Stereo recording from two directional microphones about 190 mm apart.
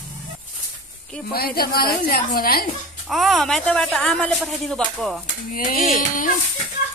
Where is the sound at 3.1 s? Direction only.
Centre (ahead or behind).